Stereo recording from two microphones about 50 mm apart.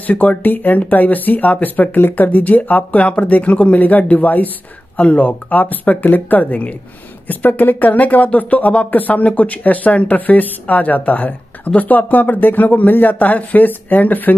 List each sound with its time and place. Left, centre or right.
0.0 s speech: left